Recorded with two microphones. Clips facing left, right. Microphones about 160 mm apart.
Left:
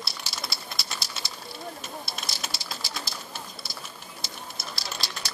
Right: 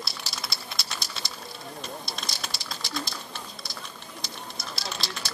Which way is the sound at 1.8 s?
5° left (ahead or behind).